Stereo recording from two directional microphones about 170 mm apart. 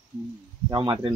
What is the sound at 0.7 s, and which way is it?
Speech, 25° right (ahead or behind).